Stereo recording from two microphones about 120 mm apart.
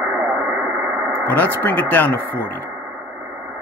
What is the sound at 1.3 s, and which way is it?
Speech, 15° left (ahead or behind).